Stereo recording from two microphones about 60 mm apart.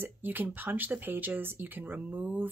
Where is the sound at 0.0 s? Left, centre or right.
Right.